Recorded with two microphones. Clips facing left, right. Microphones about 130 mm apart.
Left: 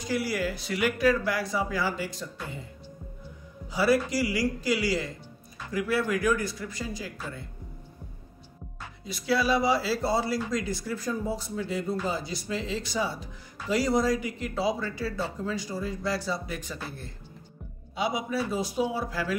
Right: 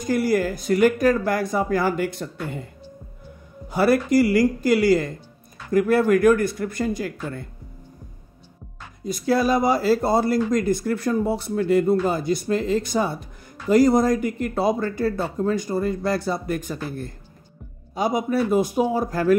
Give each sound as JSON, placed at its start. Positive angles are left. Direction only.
{"t": 0.0, "sound": "speech", "side_deg": -50}
{"t": 3.7, "sound": "speech", "side_deg": -55}
{"t": 9.0, "sound": "speech", "side_deg": -45}